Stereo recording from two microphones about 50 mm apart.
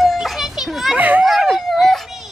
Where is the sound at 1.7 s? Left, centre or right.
Centre.